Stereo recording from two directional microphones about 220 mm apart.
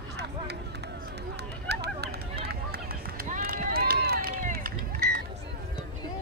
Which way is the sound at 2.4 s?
45° right (ahead or behind).